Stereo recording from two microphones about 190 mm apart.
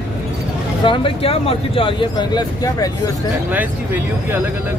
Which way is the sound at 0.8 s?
30° left (ahead or behind).